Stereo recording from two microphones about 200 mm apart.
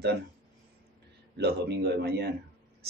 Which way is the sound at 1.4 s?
55° right (ahead or behind).